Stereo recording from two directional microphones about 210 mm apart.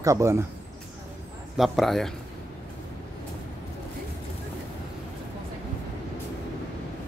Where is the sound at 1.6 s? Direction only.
Centre (ahead or behind).